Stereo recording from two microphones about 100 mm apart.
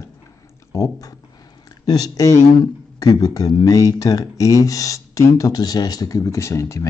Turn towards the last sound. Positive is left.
turn(degrees=30)  # may be behind; listen again after turning